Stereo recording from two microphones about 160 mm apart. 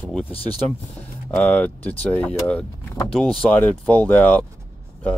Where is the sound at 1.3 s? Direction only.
10° left (ahead or behind).